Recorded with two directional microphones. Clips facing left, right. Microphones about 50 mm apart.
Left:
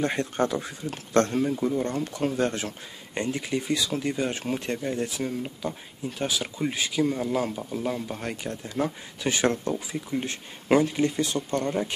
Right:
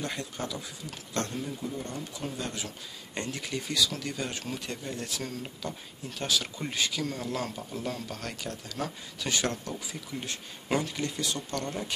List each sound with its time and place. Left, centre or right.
0.0 s speech: left
3.2 s speech: left